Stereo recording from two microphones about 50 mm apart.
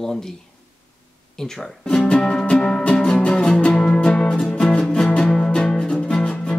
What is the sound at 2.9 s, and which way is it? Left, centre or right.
Music, centre.